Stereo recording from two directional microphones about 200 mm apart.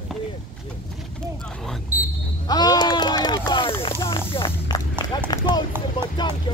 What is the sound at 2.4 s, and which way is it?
Speech, 20° left (ahead or behind).